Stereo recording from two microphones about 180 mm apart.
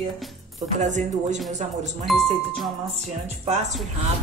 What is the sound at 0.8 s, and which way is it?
Speech, 45° right (ahead or behind).